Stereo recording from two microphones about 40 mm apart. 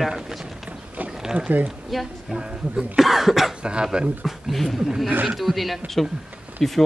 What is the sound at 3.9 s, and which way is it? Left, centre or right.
Speech, right.